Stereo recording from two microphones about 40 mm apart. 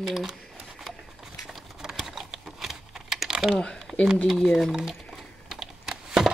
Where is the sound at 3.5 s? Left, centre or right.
Centre.